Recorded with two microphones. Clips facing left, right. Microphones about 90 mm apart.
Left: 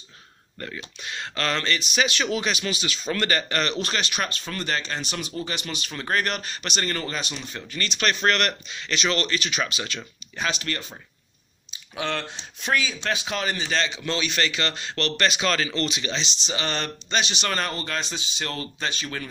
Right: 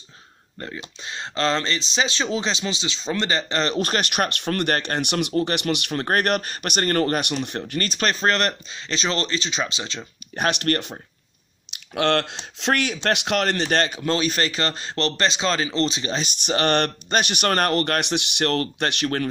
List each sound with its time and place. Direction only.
0.6 s speech: 25° right (ahead or behind)
3.7 s speech: 45° right (ahead or behind); by 6.0 s 65° right (ahead or behind)
6.0 s speech: 55° right (ahead or behind); by 10.0 s 25° right (ahead or behind)
10.3 s speech: 55° right (ahead or behind)
11.9 s speech: 80° right; by 16.2 s 35° right (ahead or behind)
16.2 s speech: 55° right (ahead or behind)